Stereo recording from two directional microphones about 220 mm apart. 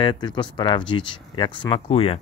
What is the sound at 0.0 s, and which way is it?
Speech, 20° left (ahead or behind).